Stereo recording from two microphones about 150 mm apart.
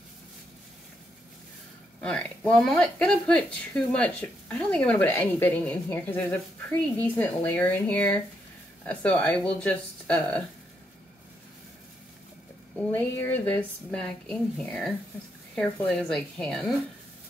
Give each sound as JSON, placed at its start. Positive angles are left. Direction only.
{"t": 2.0, "sound": "speech", "side_deg": 10}
{"t": 12.7, "sound": "a woman's voice", "side_deg": 15}